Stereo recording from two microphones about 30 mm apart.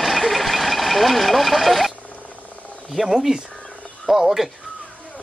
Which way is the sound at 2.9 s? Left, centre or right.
Centre.